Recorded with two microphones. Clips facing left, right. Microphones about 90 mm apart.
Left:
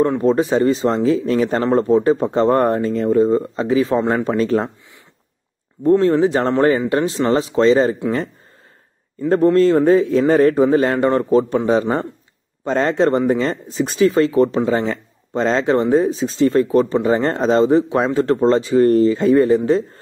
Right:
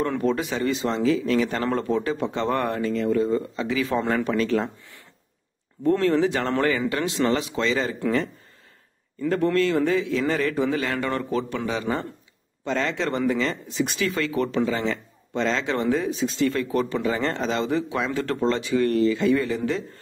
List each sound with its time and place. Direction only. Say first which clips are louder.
0.0 s speech: left 8 dB; 30° left (ahead or behind)
5.9 s speech: left 7 dB; 25° left (ahead or behind)
9.3 s speech: left 9 dB; 35° left (ahead or behind)